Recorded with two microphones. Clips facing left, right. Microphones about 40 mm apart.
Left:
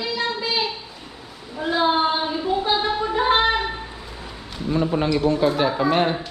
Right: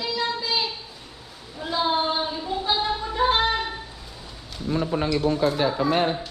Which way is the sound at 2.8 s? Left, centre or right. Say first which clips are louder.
Left 2 dB; left.